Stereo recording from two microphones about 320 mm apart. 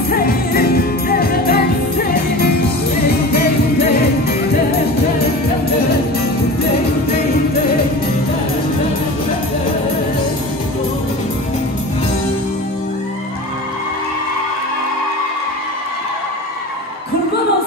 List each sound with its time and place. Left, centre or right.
0.1 s music: left